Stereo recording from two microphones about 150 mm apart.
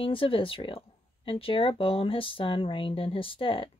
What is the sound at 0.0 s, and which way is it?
Speech, 35° left (ahead or behind).